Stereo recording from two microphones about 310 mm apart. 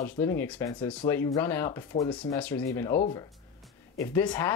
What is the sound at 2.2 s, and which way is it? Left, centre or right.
Speech, centre.